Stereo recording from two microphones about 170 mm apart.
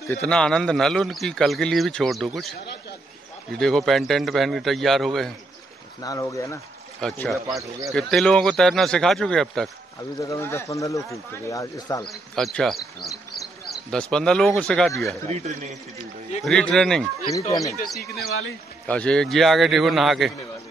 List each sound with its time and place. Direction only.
0.2 s a man's voice: 5° left (ahead or behind)
3.5 s a man's voice: 5° left (ahead or behind)
6.0 s speech: 20° left (ahead or behind)
7.0 s a man's voice: 5° left (ahead or behind)
7.4 s speech: 20° right (ahead or behind)
7.9 s a man's voice: 5° left (ahead or behind)
10.2 s speech: 15° left (ahead or behind)
12.1 s a man's voice: centre (ahead or behind)
15.2 s a man's voice: 40° right (ahead or behind)
16.4 s a man's voice: 5° left (ahead or behind)
17.3 s speech: 20° left (ahead or behind)
18.9 s a man's voice: 5° left (ahead or behind)